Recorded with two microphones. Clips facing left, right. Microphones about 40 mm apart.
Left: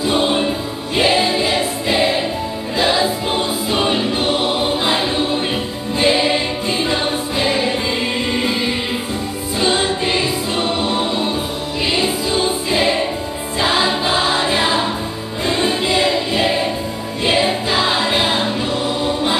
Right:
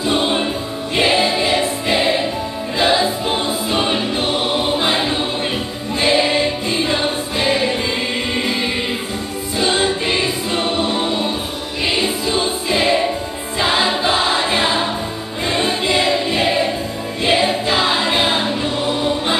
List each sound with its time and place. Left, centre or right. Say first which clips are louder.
0.0 s music: left 1 dB; centre
0.9 s choir: even; centre
2.8 s music: right 1 dB; centre
3.7 s choir: left 2 dB; centre
4.4 s choir: even; centre
5.9 s music: even; centre
6.9 s music: even; centre
9.6 s choir: even; centre
10.6 s music: even; centre
13.6 s choir: even; centre
14.6 s music: left 1 dB; centre
15.5 s choir: even; centre
17.4 s music: even; centre